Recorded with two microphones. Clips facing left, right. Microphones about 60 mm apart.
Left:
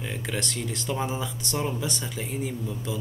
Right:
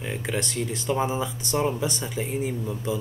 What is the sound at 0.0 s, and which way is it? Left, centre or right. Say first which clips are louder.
Speech: right 3 dB; centre.